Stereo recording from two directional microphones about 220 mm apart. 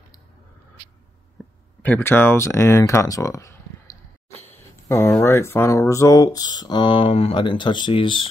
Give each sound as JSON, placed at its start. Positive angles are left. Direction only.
{"t": 1.8, "sound": "speech", "side_deg": 10}